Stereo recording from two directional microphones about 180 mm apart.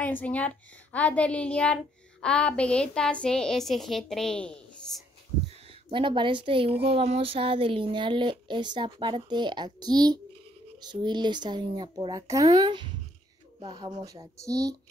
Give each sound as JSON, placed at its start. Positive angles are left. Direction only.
{"t": 0.0, "sound": "a woman's voice", "side_deg": 10}
{"t": 5.9, "sound": "speech", "side_deg": -30}